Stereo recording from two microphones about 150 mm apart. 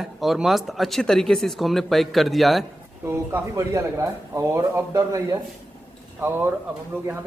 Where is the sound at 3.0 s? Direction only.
20° right (ahead or behind).